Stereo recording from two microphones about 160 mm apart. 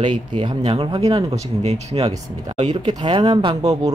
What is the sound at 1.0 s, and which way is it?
Speech, 20° right (ahead or behind).